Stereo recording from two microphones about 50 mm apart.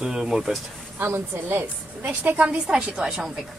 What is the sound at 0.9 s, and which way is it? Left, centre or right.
Speech, right.